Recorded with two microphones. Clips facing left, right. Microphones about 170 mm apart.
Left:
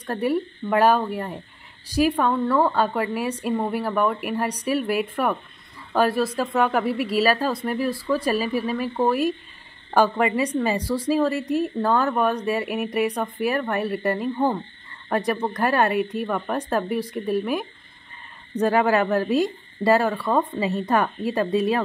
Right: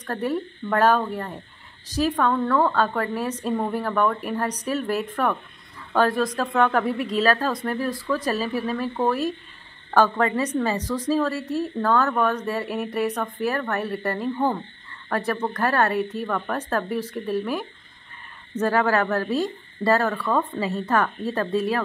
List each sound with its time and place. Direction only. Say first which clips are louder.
0.0 s a woman's voice: left 3 dB; 10° left (ahead or behind)